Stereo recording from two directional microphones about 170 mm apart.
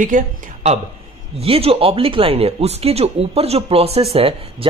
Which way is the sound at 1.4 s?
35° right (ahead or behind).